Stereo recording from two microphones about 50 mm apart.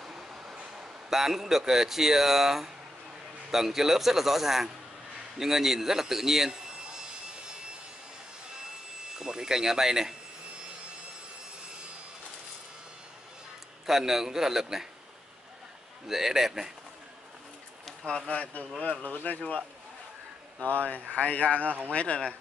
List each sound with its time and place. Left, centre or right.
0.0 s vehicle: centre
0.7 s speech: centre
5.4 s a sound: centre
9.2 s speech: centre
13.8 s speech: centre
16.1 s speech: centre
18.0 s speech: centre
20.6 s speech: left
21.6 s speech: right
21.9 s speech: left